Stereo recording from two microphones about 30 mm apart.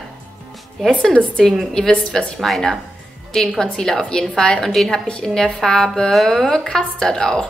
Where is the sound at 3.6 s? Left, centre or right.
Left.